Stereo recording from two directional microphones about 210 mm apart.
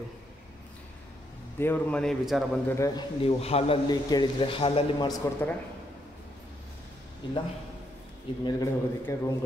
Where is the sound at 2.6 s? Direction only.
15° left (ahead or behind).